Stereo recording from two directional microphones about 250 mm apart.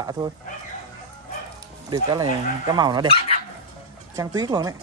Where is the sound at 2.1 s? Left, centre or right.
Centre.